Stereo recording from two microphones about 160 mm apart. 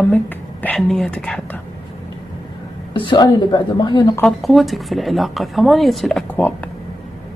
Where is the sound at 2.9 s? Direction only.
30° left (ahead or behind).